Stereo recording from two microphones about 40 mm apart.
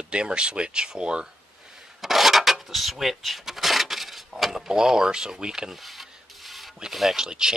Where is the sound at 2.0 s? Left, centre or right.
Centre.